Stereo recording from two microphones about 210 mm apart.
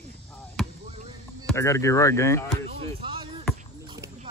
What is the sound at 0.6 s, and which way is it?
Basketball bounce, centre (ahead or behind).